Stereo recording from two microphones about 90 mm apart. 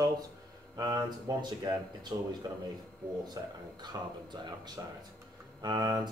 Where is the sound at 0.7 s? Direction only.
50° right (ahead or behind).